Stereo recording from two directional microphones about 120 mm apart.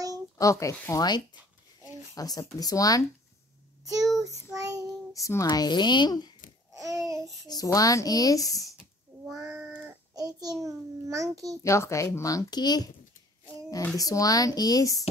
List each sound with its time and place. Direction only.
0.4 s speech: 25° left (ahead or behind)
4.6 s child singing: 30° right (ahead or behind)
5.1 s speech: 25° left (ahead or behind)
6.7 s babbling: 30° right (ahead or behind)
7.4 s speech: 30° left (ahead or behind)
9.1 s child singing: 30° right (ahead or behind)
9.6 s child singing: 15° right (ahead or behind)
10.1 s a child's voice: 30° right (ahead or behind)
11.6 s speech: 25° left (ahead or behind)
13.9 s speech: 30° left (ahead or behind)